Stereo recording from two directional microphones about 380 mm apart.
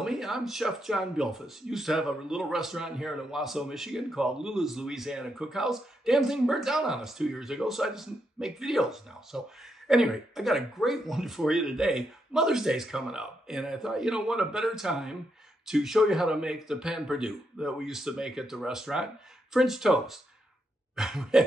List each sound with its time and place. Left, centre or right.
0.0 s speech: centre